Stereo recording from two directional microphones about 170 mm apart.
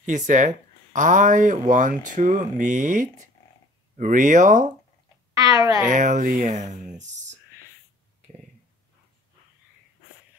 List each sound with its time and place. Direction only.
0.0 s speech: 45° right (ahead or behind)
5.3 s a woman's voice: 20° right (ahead or behind)
5.9 s speech: 45° right (ahead or behind)